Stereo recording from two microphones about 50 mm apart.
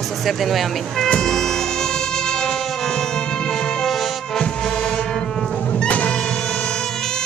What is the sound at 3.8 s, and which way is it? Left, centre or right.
Music, centre.